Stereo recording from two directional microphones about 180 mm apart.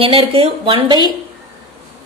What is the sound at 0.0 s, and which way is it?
Speech, 30° right (ahead or behind).